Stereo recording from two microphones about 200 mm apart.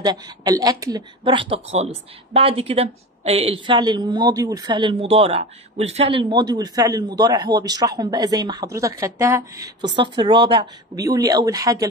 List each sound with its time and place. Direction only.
0.0 s speech: 20° right (ahead or behind)